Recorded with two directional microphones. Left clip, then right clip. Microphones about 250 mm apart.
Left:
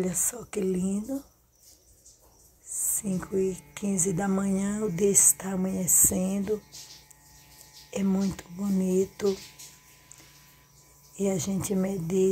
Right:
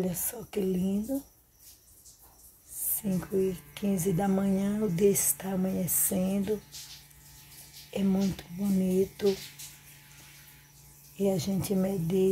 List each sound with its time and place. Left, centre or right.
0.0 s a woman's voice: centre
3.0 s a woman's voice: centre
7.9 s a woman's voice: centre
11.1 s a woman's voice: centre